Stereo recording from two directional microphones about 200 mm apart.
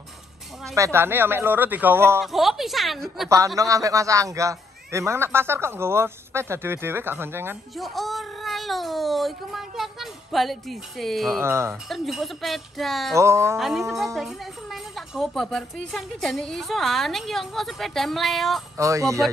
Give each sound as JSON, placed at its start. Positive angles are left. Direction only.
{"t": 0.7, "sound": "a man's voice", "side_deg": -15}
{"t": 2.2, "sound": "speech", "side_deg": 0}
{"t": 3.3, "sound": "a man's voice", "side_deg": -15}
{"t": 7.7, "sound": "speech", "side_deg": 0}
{"t": 11.4, "sound": "a man's voice", "side_deg": -15}
{"t": 11.9, "sound": "speech", "side_deg": 0}
{"t": 13.1, "sound": "a man's voice", "side_deg": -15}
{"t": 13.6, "sound": "speech", "side_deg": 0}
{"t": 18.8, "sound": "a man's voice", "side_deg": -15}